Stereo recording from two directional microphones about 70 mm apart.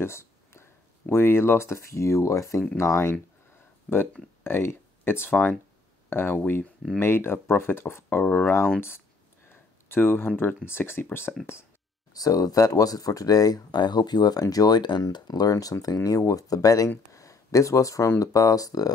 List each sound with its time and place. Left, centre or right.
0.0 s a sound: left
1.1 s speech: left
3.9 s speech: centre
4.4 s speech: left
9.5 s a sound: left
10.7 s speech: left
12.1 s speech: left
14.4 s speech: left
17.1 s a sound: left
18.2 s speech: left